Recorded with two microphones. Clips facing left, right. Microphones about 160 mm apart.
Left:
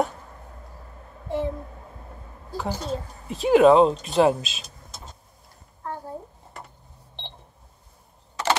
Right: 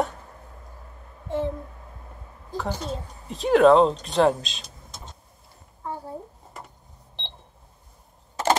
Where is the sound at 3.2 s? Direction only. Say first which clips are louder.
Left 1 dB; 5° left (ahead or behind).